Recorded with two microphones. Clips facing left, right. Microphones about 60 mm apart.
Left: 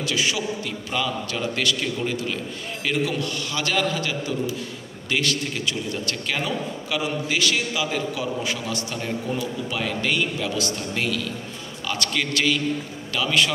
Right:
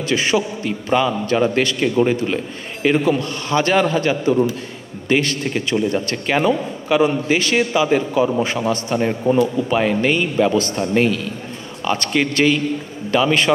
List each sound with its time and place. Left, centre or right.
0.0 s a man's voice: right